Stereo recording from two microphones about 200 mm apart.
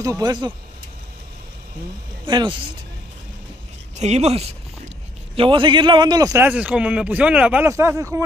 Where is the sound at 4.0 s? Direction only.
35° right (ahead or behind); by 7.9 s 10° right (ahead or behind).